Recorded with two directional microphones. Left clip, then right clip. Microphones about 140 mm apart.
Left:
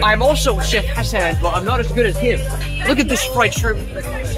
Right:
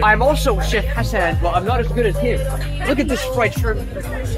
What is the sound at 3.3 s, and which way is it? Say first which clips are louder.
Speech: left 3 dB; 35° left (ahead or behind).